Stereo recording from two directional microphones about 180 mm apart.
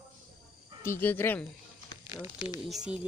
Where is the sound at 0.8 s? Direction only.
10° left (ahead or behind).